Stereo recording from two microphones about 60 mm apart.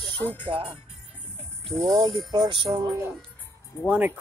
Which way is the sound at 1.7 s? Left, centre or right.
Centre.